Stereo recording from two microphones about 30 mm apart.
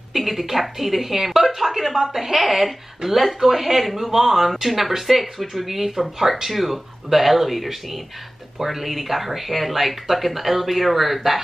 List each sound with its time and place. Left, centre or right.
0.1 s a woman's voice: centre